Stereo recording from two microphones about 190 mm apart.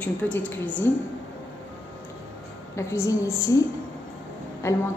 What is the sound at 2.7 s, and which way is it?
Speech, 15° left (ahead or behind).